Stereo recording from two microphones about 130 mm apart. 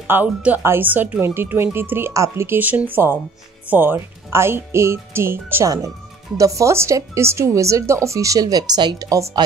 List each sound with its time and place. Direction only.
0.0 s speech: 15° right (ahead or behind)